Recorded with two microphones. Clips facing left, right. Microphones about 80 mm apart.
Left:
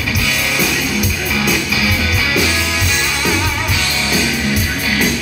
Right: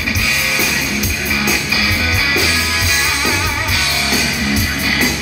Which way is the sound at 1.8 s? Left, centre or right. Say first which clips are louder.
Left 1 dB; right.